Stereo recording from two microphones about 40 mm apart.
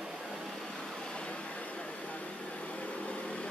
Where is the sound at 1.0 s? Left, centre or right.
Left.